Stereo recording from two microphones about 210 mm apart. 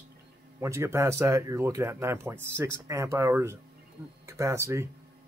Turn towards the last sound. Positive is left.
turn(degrees=-15)  # may be behind; listen again after turning